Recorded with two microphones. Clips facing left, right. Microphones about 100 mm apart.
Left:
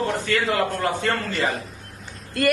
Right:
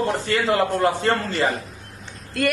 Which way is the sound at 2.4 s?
Centre (ahead or behind).